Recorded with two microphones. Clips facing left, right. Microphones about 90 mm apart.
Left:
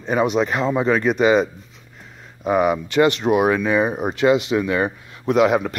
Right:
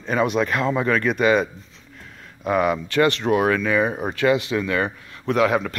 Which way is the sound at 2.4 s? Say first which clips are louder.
Left 2 dB; 10° left (ahead or behind).